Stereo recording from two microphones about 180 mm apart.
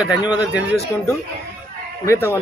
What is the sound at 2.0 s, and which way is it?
Speech, 15° left (ahead or behind).